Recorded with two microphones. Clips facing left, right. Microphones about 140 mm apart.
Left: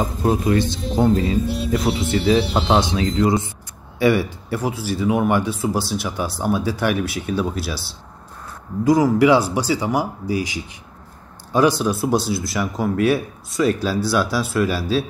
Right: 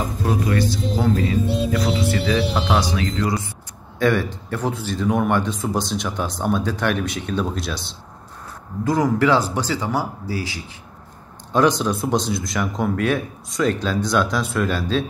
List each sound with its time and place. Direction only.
0.2 s speech: 25° left (ahead or behind)
4.0 s speech: 10° left (ahead or behind)